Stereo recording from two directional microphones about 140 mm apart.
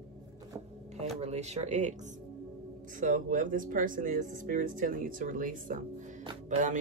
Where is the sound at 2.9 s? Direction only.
70° right (ahead or behind).